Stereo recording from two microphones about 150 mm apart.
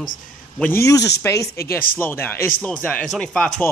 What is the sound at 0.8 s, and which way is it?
A man's voice, 25° left (ahead or behind).